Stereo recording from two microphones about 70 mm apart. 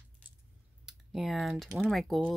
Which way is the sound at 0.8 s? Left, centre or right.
Centre.